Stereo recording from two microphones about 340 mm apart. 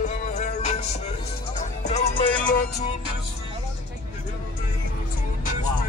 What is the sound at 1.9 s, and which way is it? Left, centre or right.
Music, centre.